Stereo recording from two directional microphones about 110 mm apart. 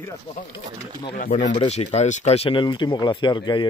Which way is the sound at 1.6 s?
80° left.